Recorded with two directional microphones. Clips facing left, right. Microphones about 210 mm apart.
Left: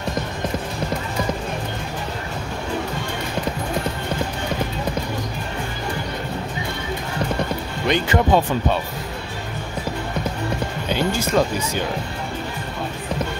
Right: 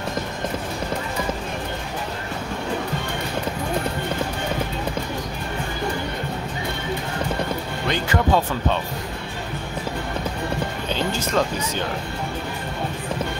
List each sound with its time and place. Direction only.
7.9 s speech: 20° left (ahead or behind)
10.9 s speech: 10° left (ahead or behind)